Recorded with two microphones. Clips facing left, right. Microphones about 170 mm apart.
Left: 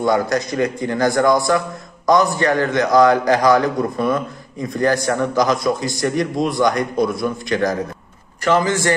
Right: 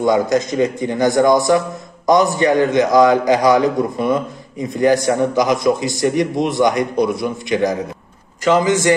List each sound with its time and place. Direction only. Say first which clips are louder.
0.0 s a man's voice: right 3 dB; 20° right (ahead or behind)